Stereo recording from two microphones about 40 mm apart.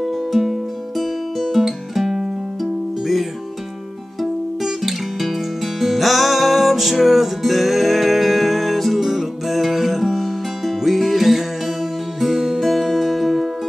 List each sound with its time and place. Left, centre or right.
0.0 s music: centre